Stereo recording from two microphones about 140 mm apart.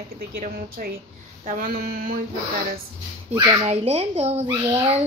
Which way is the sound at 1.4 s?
75° right (ahead or behind).